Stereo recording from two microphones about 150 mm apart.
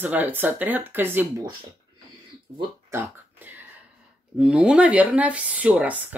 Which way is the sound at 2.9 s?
15° right (ahead or behind).